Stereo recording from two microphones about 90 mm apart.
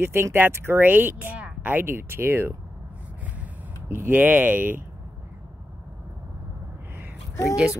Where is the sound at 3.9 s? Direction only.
25° right (ahead or behind).